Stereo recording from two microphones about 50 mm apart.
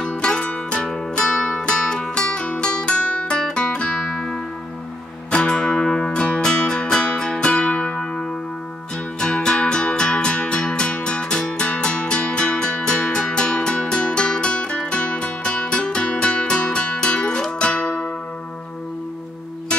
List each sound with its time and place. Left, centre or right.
0.0 s music: centre
9.2 s music: centre